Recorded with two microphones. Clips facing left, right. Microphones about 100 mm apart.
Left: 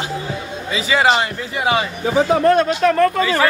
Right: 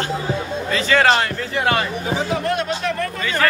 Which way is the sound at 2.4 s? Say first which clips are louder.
Left 8 dB; 45° left (ahead or behind).